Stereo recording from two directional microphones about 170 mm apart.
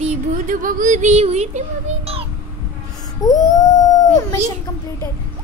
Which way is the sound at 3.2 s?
20° left (ahead or behind).